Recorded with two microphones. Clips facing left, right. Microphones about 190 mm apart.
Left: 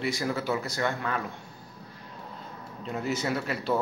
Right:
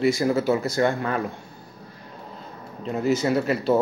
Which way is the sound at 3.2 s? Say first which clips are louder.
Right 8 dB; 40° right (ahead or behind).